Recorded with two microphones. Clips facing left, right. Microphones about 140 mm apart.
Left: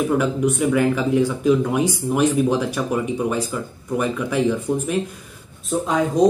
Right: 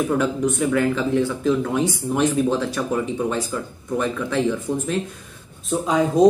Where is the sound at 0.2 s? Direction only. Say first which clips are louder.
Left 1 dB; 10° left (ahead or behind).